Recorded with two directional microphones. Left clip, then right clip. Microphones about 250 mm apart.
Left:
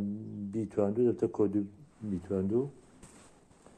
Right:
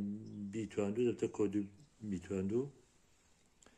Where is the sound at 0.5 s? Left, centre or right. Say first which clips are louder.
Left 8 dB; centre.